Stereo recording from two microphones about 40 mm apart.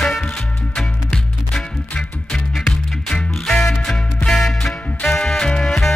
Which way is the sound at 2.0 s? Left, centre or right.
Centre.